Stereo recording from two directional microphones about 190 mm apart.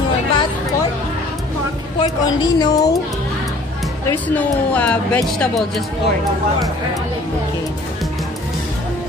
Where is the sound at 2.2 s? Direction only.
20° left (ahead or behind).